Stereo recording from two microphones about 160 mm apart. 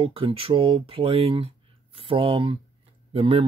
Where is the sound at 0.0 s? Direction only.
35° right (ahead or behind).